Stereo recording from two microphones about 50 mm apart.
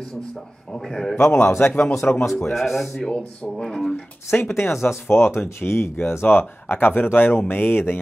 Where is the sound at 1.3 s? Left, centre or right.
Left.